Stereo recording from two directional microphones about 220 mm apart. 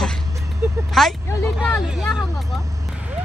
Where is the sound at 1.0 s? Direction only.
Centre (ahead or behind).